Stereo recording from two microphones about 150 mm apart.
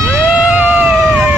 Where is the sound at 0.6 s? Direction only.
10° right (ahead or behind).